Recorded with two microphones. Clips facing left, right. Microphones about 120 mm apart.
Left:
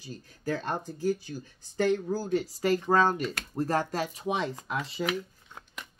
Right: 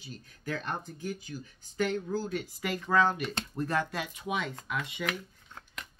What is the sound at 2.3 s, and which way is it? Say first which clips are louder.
Speech: left 8 dB; 35° left (ahead or behind).